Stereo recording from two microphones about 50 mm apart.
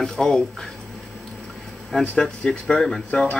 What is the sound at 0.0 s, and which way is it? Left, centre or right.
Speech, centre.